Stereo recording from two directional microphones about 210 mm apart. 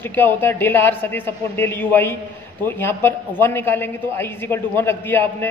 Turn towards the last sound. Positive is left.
turn(degrees=10)  # may be behind; listen again after turning